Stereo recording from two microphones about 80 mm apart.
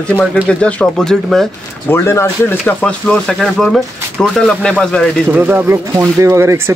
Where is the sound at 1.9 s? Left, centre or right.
Left.